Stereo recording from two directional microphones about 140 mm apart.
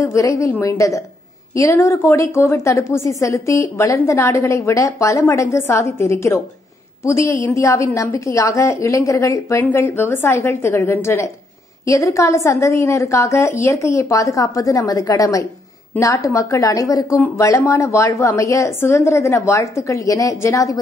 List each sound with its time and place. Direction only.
0.0 s a woman's voice: 20° left (ahead or behind)